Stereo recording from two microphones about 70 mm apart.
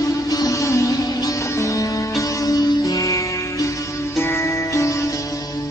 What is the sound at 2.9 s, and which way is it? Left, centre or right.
Music, left.